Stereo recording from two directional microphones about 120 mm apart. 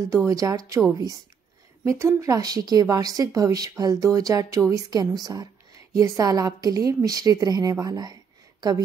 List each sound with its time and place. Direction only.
0.1 s a woman's voice: 25° right (ahead or behind)